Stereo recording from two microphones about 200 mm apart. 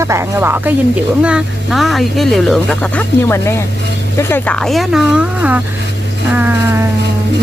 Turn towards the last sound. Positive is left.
turn(degrees=-10)  # may be behind; listen again after turning